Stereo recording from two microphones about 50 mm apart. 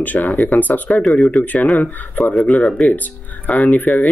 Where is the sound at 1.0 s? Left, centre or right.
Centre.